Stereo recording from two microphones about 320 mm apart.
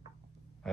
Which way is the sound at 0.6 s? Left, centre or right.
Centre.